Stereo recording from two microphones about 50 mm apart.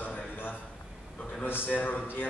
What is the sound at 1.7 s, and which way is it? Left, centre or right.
Speech, left.